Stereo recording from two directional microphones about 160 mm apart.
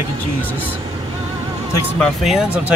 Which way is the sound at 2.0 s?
Centre (ahead or behind).